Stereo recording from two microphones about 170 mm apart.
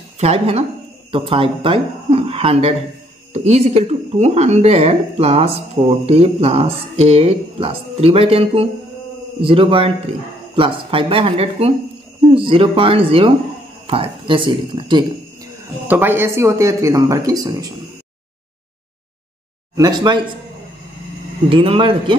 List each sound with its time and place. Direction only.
0.2 s speech: 35° right (ahead or behind)
15.9 s speech: 10° right (ahead or behind)
19.7 s speech: 20° right (ahead or behind)
21.5 s speech: 30° right (ahead or behind)